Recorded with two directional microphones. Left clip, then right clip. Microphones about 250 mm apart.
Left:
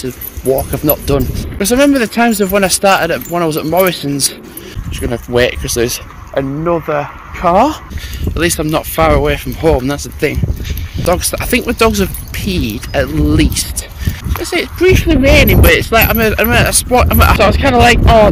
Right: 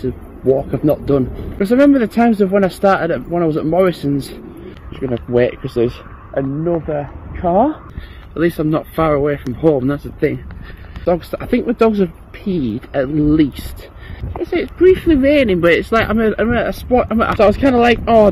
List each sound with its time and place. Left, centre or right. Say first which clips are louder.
0.7 s speech: left 1 dB; centre
5.1 s speech: left 3 dB; centre
6.3 s speech: left 4 dB; left
8.4 s speech: left 2 dB; centre
9.6 s speech: left 2 dB; centre
9.8 s speech: left 2 dB; centre
14.5 s speech: left 1 dB; centre
15.0 s speech: left 3 dB; centre